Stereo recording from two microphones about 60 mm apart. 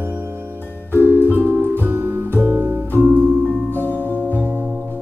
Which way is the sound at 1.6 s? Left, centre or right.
Right.